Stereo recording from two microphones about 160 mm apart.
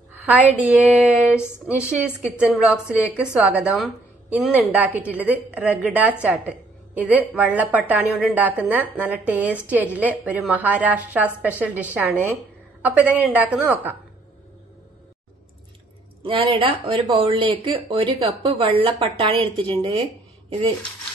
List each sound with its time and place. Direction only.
0.1 s a sound: 10° right (ahead or behind)
0.7 s a woman's voice: 10° right (ahead or behind)
16.2 s speech: 35° right (ahead or behind)